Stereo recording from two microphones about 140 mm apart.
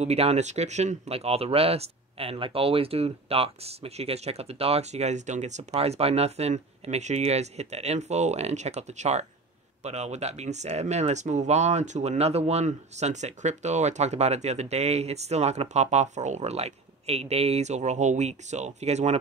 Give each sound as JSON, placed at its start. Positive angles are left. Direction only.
{"t": 0.0, "sound": "speech", "side_deg": -50}